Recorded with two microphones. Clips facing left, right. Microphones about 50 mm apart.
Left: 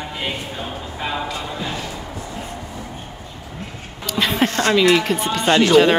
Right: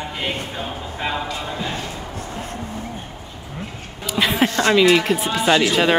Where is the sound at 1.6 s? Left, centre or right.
Right.